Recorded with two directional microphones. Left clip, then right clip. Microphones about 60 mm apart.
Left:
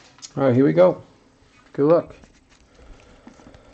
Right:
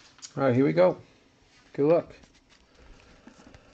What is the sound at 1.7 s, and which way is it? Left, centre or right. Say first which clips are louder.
Speech: left 6 dB; right.